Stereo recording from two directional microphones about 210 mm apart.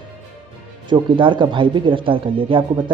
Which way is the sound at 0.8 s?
20° right (ahead or behind).